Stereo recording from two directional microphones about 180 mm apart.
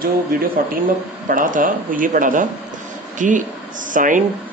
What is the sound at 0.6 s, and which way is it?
Speech, 50° right (ahead or behind).